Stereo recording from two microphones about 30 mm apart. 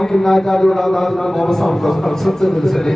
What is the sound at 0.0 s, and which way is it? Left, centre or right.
A man's voice, centre.